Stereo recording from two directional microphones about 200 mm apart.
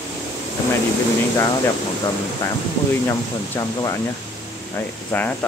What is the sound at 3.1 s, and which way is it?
Speech, 15° left (ahead or behind).